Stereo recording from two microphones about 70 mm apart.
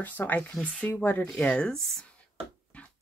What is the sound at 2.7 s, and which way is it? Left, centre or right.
Dog, centre.